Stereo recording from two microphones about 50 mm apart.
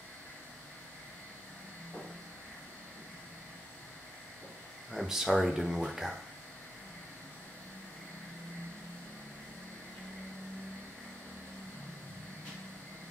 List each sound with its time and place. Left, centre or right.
4.9 s speech: centre